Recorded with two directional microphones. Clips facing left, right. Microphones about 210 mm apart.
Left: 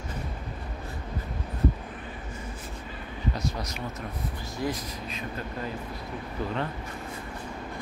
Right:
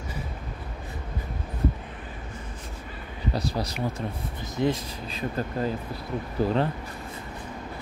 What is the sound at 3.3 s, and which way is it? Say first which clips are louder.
Speech: right 4 dB; 35° right (ahead or behind).